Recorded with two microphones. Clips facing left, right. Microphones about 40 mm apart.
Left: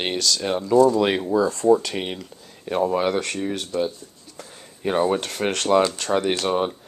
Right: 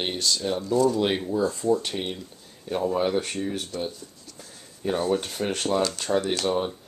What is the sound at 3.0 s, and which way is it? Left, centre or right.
Speech, left.